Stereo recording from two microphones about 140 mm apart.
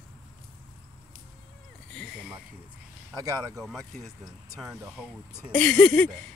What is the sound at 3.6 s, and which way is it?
Speech, centre (ahead or behind).